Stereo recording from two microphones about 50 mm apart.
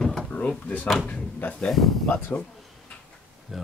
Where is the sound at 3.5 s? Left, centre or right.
Centre.